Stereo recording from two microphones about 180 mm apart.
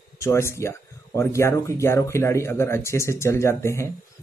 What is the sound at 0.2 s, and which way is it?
Speech, 15° left (ahead or behind).